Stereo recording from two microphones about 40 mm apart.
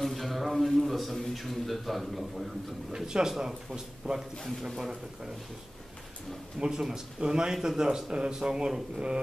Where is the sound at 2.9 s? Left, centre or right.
Centre.